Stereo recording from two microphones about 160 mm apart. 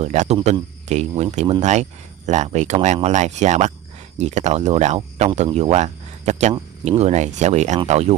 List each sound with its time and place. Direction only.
0.0 s speech: 45° right (ahead or behind)